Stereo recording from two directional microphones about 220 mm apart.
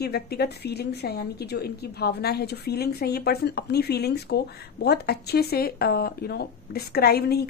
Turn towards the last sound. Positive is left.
turn(degrees=45)  # may be behind; listen again after turning